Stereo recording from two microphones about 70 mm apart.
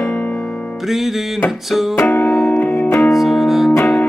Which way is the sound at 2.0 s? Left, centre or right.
Left.